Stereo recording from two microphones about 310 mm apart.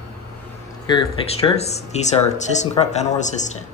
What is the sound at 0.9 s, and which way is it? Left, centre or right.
Speech, centre.